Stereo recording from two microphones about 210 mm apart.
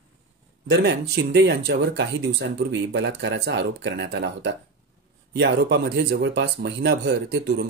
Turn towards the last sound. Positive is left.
turn(degrees=-50)  # may be behind; listen again after turning